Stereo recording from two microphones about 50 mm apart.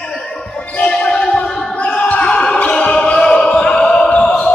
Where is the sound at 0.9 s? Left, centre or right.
Centre.